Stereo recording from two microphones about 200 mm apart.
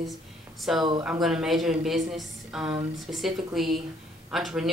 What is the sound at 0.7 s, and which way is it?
Speech, centre (ahead or behind).